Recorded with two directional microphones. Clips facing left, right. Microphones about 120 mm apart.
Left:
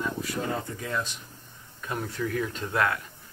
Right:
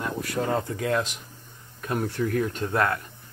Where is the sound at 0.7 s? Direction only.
75° right (ahead or behind).